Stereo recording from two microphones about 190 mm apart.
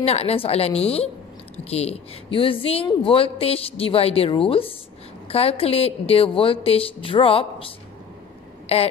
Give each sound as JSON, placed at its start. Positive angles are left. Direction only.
{"t": 0.0, "sound": "a woman's voice", "side_deg": 30}